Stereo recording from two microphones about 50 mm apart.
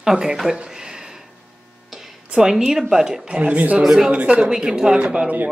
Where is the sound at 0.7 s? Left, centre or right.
Centre.